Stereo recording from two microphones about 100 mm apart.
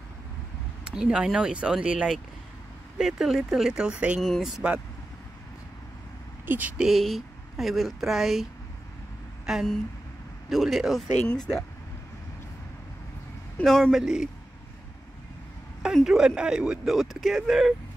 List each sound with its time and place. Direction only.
0.8 s speech: 10° right (ahead or behind)
4.2 s speech: centre (ahead or behind)
6.4 s speech: 20° right (ahead or behind)
6.8 s speech: centre (ahead or behind)
9.5 s speech: centre (ahead or behind)
13.7 s speech: 5° left (ahead or behind)
15.8 s speech: 5° right (ahead or behind)